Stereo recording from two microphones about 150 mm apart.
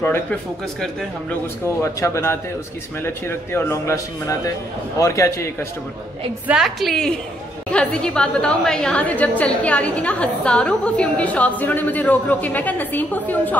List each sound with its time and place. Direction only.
0.0 s a woman's voice: 15° left (ahead or behind)
1.8 s a man's voice: 20° left (ahead or behind)
6.4 s a woman's voice: 5° right (ahead or behind)